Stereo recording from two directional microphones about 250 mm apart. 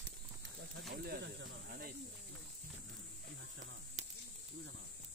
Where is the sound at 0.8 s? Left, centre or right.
Right.